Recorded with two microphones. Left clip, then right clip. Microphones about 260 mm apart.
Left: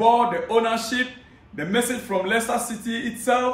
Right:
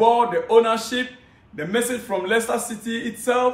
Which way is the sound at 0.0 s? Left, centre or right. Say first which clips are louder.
Right 1 dB; centre.